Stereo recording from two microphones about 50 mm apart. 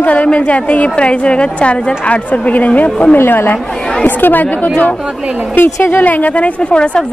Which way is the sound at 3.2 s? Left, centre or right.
Left.